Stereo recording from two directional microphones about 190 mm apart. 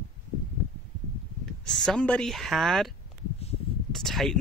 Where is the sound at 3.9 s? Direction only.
Centre (ahead or behind).